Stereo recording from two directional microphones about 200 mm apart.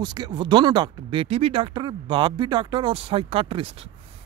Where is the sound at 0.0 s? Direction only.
20° right (ahead or behind).